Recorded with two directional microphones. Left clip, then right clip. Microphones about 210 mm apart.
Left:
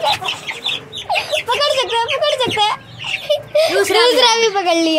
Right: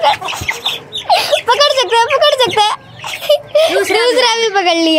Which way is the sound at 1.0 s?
25° right (ahead or behind).